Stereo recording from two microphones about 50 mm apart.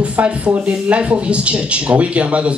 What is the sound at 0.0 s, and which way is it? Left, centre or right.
Speech, right.